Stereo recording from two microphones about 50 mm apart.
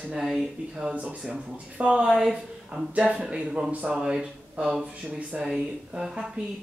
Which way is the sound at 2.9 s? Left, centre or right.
Right.